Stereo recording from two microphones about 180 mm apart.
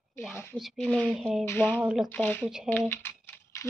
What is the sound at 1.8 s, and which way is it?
Speech, centre (ahead or behind).